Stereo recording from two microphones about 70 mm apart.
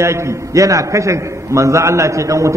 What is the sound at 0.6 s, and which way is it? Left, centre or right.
A man's voice, right.